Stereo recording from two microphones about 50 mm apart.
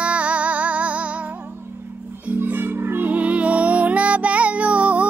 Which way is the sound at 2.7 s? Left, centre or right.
Right.